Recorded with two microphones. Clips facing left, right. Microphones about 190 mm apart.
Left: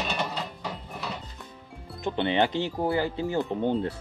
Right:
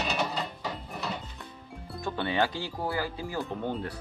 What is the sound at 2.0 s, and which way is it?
Speech, 20° left (ahead or behind).